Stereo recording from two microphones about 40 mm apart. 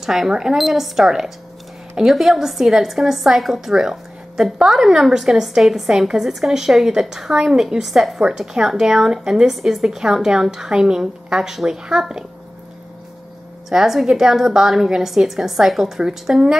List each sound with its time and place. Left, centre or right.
0.0 s speech: centre
0.6 s speech: centre
13.7 s speech: centre
16.0 s speech: centre